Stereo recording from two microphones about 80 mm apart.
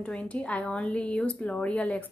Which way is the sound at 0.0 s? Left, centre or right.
Centre.